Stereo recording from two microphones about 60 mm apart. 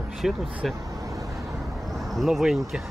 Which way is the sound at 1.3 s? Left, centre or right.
Centre.